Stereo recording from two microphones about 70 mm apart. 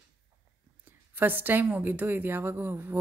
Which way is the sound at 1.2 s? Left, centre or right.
Right.